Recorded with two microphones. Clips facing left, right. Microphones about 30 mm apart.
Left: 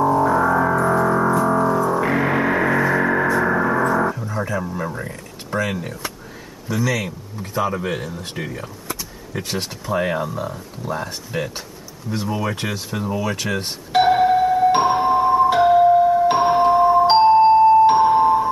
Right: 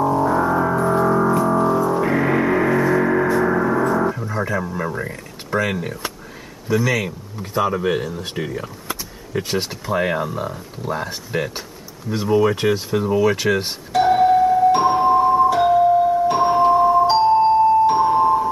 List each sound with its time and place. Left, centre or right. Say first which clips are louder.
0.0 s music: left 1 dB; centre
3.4 s gong: even; centre
4.2 s speech: right 2 dB; centre
8.9 s speech: right 4 dB; centre
14.1 s doorbell: right 1 dB; left
15.0 s music: right 2 dB; left
15.3 s music: left 1 dB; left
16.7 s music: left 1 dB; left